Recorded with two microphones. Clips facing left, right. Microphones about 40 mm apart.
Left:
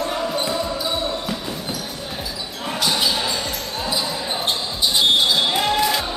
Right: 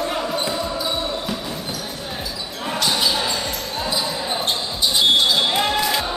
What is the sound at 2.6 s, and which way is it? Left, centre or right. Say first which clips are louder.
Basketball bounce: even; centre.